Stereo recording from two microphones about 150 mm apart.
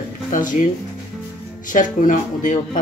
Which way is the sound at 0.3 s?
60° left (ahead or behind).